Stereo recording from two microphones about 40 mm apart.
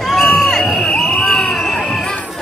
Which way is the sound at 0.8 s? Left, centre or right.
Left.